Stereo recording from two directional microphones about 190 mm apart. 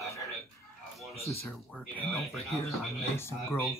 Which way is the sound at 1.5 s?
5° left (ahead or behind).